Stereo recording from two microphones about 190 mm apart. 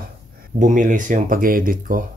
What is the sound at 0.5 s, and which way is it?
Speech, 40° right (ahead or behind).